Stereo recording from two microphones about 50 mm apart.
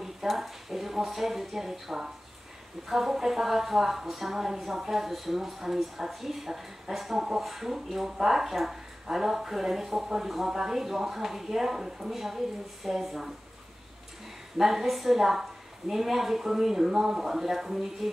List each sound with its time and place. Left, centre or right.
0.0 s a woman's voice: centre
14.6 s a woman's voice: centre